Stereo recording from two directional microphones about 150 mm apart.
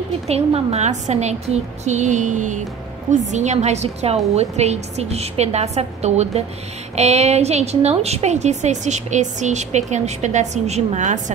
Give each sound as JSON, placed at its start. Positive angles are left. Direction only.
{"t": 0.3, "sound": "a woman's voice", "side_deg": -45}